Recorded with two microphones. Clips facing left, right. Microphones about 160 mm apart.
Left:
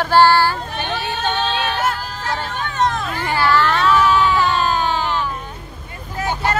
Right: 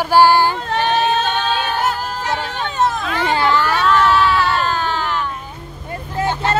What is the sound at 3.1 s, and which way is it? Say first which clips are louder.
Speech: right 4 dB; 90° right.